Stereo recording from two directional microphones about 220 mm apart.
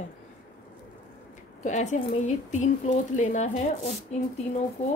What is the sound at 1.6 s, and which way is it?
Speech, 35° left (ahead or behind).